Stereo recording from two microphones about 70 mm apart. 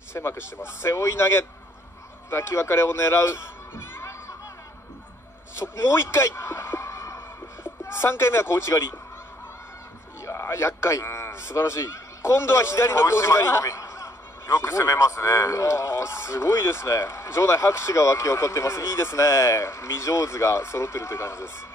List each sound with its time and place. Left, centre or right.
0.1 s a man's voice: left
5.6 s a sound: left
7.8 s a man's voice: left
10.2 s a man's voice: left